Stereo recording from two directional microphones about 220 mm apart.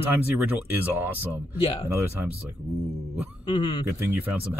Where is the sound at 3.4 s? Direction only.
20° left (ahead or behind).